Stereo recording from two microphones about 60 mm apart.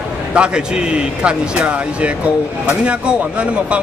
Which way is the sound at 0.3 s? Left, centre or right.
Centre.